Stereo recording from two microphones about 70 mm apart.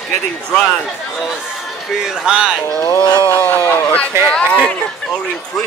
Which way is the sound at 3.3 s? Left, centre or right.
Left.